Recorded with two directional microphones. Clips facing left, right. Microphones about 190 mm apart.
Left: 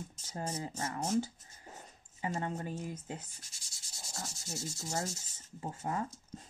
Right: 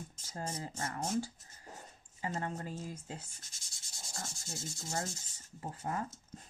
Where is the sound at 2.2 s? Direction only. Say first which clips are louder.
Left 2 dB; 20° left (ahead or behind).